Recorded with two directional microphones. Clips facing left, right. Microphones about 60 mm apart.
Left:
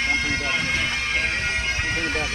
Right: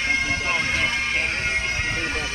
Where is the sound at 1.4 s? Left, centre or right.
Right.